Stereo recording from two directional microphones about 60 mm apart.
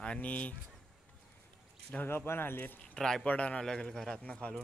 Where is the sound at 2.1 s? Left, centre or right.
Left.